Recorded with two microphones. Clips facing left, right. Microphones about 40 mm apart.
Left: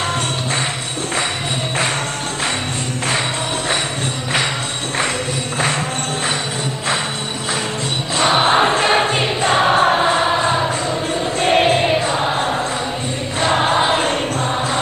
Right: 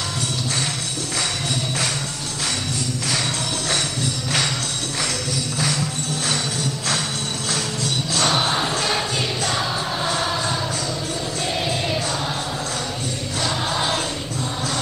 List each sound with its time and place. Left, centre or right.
8.2 s choir: left
10.0 s a sound: left
11.4 s choir: left
13.4 s choir: left